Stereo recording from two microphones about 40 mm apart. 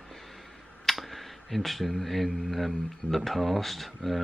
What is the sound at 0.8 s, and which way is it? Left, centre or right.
Speech, centre.